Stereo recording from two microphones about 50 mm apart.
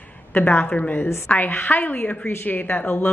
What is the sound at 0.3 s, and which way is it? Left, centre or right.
Speech, left.